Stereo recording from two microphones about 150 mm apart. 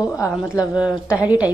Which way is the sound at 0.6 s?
5° right (ahead or behind).